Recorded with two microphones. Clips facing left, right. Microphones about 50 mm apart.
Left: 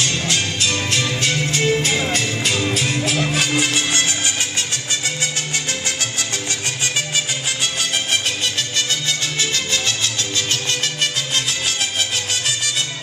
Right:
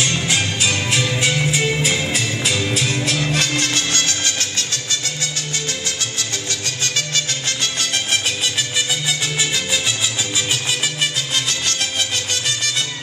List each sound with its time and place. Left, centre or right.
0.0 s music: centre
6.8 s music: centre